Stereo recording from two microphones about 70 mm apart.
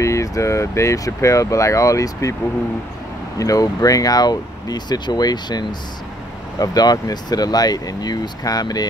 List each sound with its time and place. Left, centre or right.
0.0 s speech: left
3.3 s speech: left
6.6 s speech: left